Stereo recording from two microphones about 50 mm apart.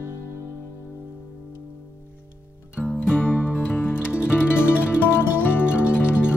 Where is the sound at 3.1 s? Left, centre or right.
Left.